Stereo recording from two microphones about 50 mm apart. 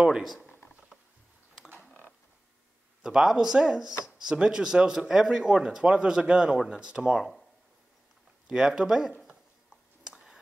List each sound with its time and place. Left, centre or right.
0.0 s speech: centre
3.0 s speech: centre
8.5 s speech: centre
10.1 s whispering: centre